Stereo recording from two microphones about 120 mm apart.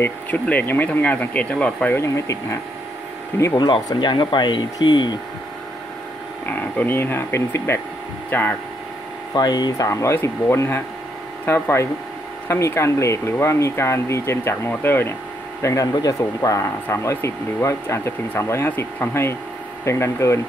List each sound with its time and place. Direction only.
0.0 s speech: 15° left (ahead or behind)
2.0 s speech: 25° left (ahead or behind)
3.5 s speech: 40° left (ahead or behind)
6.4 s speech: 15° left (ahead or behind)
9.3 s speech: 35° left (ahead or behind)